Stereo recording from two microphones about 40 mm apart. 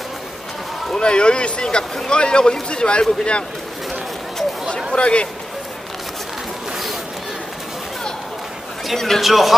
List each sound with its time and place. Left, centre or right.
0.9 s speech: left
4.9 s speech: left
8.9 s speech: centre
9.2 s speech: centre